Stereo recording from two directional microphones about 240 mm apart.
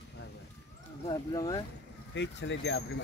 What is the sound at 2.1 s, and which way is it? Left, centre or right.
Speech, left.